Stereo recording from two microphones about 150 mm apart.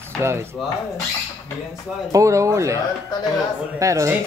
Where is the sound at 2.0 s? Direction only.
20° right (ahead or behind).